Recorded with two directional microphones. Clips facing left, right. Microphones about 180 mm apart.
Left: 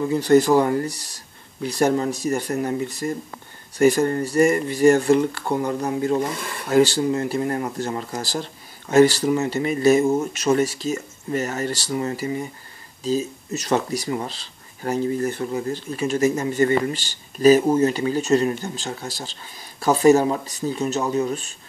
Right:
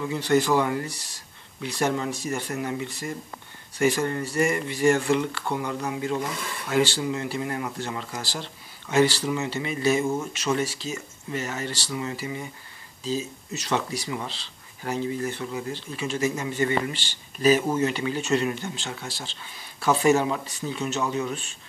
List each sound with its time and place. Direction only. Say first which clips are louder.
0.0 s speech: left 6 dB; 40° left (ahead or behind)